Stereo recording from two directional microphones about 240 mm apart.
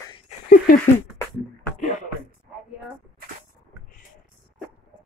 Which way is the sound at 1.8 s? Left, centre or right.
Left.